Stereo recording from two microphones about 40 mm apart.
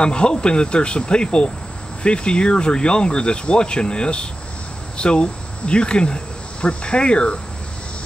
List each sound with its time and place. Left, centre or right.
0.0 s speech: left